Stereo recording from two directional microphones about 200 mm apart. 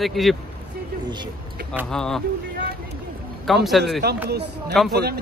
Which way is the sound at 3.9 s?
55° right (ahead or behind).